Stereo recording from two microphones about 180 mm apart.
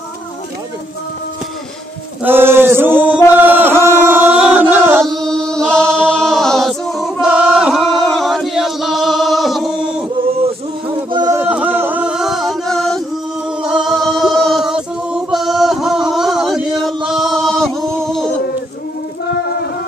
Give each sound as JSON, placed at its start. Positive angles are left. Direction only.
{"t": 2.2, "sound": "chant", "side_deg": -10}
{"t": 3.3, "sound": "music", "side_deg": -10}
{"t": 5.0, "sound": "chant", "side_deg": 0}
{"t": 11.1, "sound": "a sound", "side_deg": -25}
{"t": 11.4, "sound": "chant", "side_deg": -10}
{"t": 13.6, "sound": "music", "side_deg": -5}